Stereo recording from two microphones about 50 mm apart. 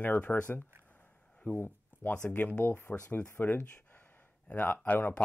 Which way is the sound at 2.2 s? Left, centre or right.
Left.